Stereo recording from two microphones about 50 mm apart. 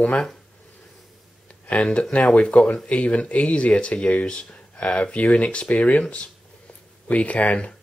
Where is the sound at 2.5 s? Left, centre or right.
Left.